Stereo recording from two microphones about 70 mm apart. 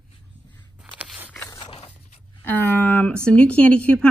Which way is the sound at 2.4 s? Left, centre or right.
Left.